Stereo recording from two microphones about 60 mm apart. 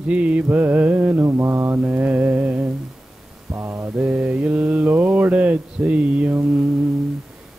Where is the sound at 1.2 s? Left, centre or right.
Right.